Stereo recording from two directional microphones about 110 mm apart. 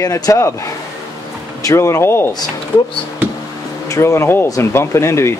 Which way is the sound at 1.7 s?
25° left (ahead or behind).